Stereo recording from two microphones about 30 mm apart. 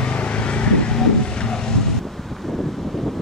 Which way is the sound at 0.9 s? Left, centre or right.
Left.